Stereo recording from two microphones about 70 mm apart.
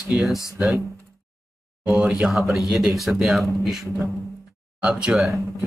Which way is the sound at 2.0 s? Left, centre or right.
Centre.